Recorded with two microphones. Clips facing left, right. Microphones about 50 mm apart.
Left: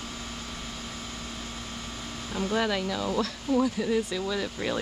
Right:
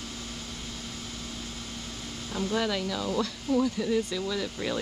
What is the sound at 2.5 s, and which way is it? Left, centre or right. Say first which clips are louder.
Speech: left 2 dB; centre.